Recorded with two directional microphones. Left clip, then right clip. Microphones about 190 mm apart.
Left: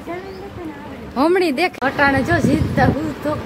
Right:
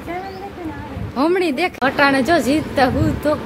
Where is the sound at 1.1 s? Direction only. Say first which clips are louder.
Left 1 dB; 15° left (ahead or behind).